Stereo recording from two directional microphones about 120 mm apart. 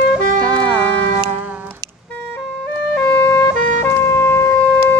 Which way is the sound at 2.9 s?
15° left (ahead or behind).